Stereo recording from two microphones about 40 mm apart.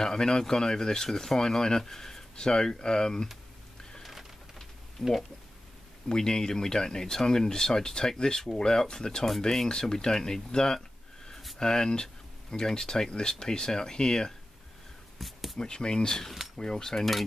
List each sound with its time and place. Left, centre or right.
0.0 s speech: centre
4.0 s bird: centre
5.0 s speech: centre
15.1 s a sound: centre
15.6 s speech: centre